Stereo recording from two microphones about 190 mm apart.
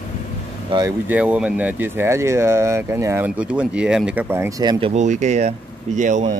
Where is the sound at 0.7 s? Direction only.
20° right (ahead or behind).